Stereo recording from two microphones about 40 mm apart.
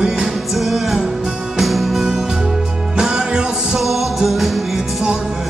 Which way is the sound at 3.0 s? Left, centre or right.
Centre.